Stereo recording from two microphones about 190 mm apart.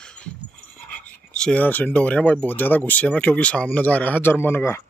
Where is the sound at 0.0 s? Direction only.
5° left (ahead or behind).